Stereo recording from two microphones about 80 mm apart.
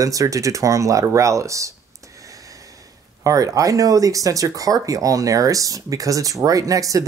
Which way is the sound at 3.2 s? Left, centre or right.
Right.